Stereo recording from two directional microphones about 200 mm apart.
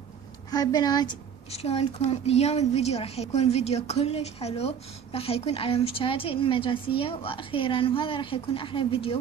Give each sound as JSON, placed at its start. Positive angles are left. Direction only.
{"t": 0.5, "sound": "a woman's voice", "side_deg": 20}